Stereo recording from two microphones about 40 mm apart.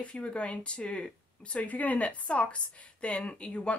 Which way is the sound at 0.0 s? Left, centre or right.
Left.